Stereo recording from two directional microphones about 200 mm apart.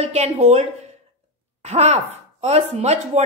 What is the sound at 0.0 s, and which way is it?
A woman's voice, 30° right (ahead or behind).